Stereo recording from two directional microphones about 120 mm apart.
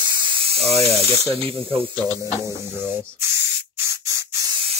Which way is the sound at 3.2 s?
20° right (ahead or behind).